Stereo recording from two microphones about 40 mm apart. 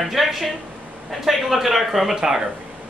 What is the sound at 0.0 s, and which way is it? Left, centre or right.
Speech, centre.